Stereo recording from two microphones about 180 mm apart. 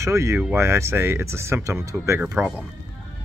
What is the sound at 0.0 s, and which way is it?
Speech, 15° right (ahead or behind).